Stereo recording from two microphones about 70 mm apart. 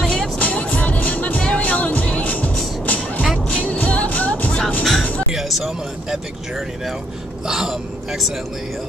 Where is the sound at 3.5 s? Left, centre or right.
Centre.